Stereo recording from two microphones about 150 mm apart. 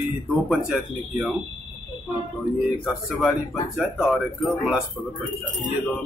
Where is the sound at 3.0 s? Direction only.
10° left (ahead or behind).